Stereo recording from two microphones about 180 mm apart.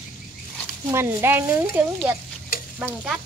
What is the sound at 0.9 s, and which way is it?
Speech, 15° right (ahead or behind).